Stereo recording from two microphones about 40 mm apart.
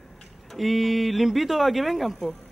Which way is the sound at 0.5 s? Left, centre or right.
Centre.